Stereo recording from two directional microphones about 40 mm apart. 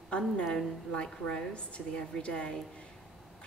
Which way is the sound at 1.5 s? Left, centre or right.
Left.